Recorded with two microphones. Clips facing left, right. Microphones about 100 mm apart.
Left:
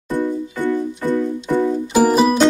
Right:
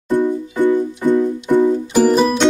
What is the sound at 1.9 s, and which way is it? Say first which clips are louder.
Music: even; 10° left (ahead or behind).